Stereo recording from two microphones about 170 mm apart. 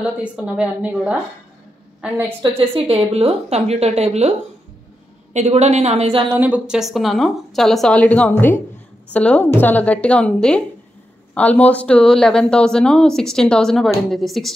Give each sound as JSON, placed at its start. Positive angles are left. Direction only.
{"t": 0.0, "sound": "a woman's voice", "side_deg": -5}
{"t": 2.5, "sound": "a woman's voice", "side_deg": -35}
{"t": 5.3, "sound": "a woman's voice", "side_deg": -40}
{"t": 6.3, "sound": "a woman's voice", "side_deg": -10}